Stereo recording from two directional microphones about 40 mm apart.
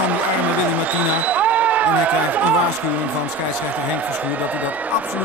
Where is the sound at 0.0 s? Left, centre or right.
Right.